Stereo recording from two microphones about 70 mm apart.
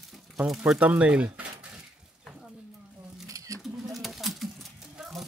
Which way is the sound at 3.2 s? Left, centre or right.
Right.